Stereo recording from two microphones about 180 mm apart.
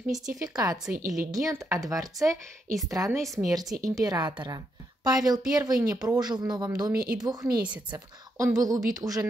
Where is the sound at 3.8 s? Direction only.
20° right (ahead or behind).